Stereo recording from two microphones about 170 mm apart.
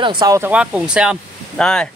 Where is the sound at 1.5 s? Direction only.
5° left (ahead or behind).